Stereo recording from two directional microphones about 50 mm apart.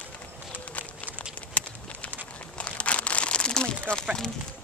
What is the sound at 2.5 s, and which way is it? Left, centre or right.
Crumpling, left.